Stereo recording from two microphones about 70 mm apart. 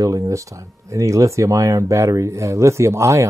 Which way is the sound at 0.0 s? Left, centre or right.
Right.